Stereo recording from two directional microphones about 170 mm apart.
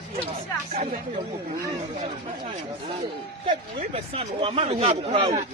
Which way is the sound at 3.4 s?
35° right (ahead or behind).